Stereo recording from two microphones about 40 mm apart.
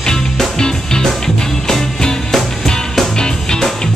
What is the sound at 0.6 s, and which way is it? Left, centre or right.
Music, centre.